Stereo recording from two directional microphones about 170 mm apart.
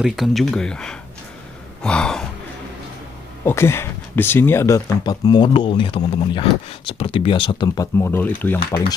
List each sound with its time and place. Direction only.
0.0 s speech: centre (ahead or behind)
3.4 s speech: 15° left (ahead or behind)